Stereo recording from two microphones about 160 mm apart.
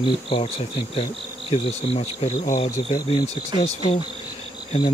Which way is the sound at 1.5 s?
40° left (ahead or behind).